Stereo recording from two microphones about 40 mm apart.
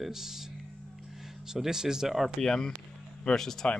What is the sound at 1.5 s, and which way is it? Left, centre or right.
Speech, centre.